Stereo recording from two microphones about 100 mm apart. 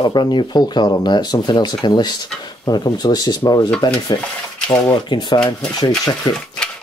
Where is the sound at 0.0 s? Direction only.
45° left (ahead or behind).